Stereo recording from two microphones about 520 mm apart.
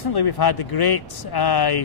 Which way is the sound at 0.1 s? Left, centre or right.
Left.